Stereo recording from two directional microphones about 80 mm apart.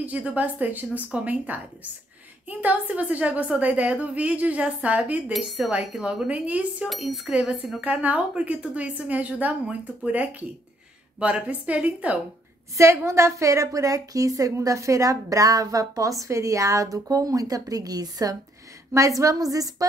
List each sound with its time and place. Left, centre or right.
0.0 s a woman's voice: centre
5.9 s a woman's voice: centre
6.9 s a woman's voice: centre
12.7 s a woman's voice: right
18.9 s a woman's voice: right